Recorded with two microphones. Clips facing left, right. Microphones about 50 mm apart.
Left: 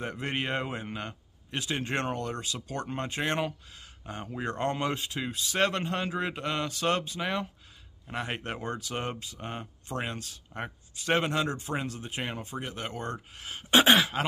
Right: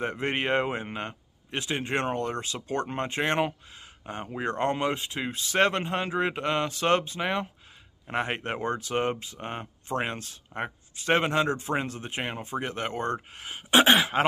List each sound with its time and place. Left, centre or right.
0.0 s speech: right